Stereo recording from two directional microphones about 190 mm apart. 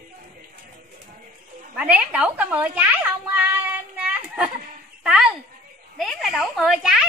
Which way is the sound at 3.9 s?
5° right (ahead or behind).